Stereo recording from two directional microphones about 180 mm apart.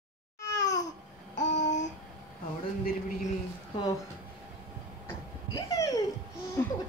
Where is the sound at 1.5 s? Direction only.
40° left (ahead or behind).